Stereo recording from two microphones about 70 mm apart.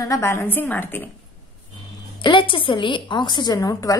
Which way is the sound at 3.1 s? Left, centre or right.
Left.